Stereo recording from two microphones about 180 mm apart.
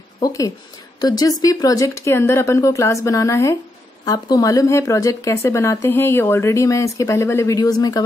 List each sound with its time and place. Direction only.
0.2 s a woman's voice: 20° left (ahead or behind)